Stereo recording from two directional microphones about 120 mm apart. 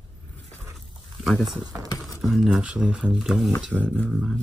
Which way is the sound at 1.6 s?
30° right (ahead or behind).